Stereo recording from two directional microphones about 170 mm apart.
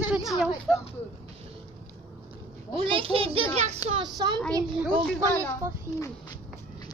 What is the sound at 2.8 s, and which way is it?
Speech, 30° right (ahead or behind).